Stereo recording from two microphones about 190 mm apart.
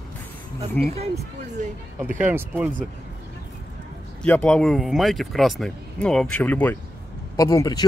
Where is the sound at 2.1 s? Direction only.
10° right (ahead or behind).